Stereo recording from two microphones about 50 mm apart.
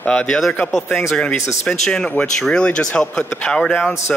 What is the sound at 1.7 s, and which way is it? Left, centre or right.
Speech, centre.